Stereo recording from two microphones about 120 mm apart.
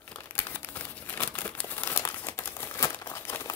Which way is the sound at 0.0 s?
15° left (ahead or behind).